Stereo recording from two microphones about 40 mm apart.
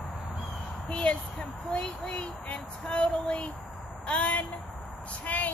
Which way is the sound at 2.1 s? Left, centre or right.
Left.